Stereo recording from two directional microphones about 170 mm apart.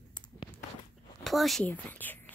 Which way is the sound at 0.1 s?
25° left (ahead or behind).